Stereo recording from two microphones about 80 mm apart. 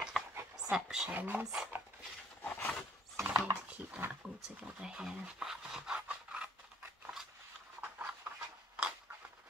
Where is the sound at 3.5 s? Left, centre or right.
Right.